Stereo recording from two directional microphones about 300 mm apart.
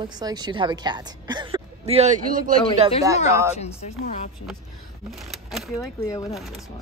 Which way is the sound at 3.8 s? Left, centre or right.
Left.